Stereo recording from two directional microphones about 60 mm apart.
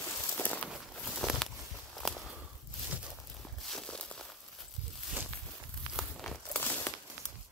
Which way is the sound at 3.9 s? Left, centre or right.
Centre.